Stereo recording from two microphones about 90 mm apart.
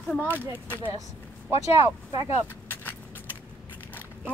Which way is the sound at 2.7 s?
20° left (ahead or behind).